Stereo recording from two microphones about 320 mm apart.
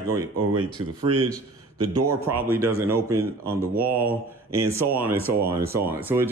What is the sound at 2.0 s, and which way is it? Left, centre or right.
A man's voice, centre.